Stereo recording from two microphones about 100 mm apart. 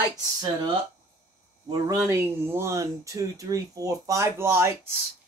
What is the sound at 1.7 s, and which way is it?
Speech, 40° right (ahead or behind).